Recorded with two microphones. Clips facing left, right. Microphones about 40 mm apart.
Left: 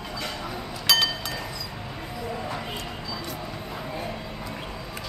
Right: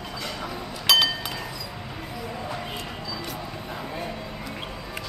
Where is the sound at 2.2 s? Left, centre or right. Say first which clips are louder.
Left 2 dB; centre.